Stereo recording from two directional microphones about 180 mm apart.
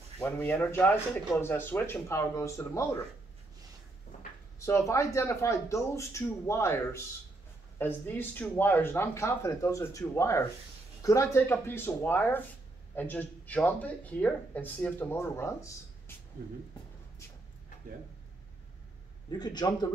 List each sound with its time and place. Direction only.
0.2 s speech: 15° left (ahead or behind)
4.6 s speech: 15° left (ahead or behind)
19.3 s a man's voice: 25° left (ahead or behind)